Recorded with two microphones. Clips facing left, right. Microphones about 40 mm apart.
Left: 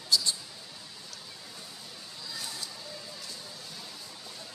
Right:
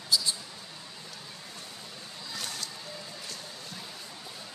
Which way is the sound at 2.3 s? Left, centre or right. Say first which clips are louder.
Right 3 dB; right.